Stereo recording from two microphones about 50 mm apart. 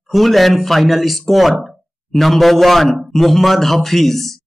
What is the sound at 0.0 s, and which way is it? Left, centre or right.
A man's voice, centre.